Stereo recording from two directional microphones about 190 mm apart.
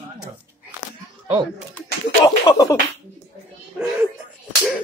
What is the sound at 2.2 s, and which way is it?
Speech, 20° left (ahead or behind).